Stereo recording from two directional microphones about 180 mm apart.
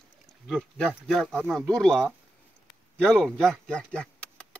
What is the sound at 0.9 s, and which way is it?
Speech, centre (ahead or behind).